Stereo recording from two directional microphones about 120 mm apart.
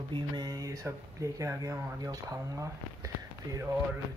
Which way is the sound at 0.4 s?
30° right (ahead or behind).